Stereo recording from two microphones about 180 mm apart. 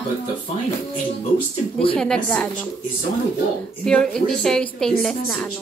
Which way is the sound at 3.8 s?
5° left (ahead or behind).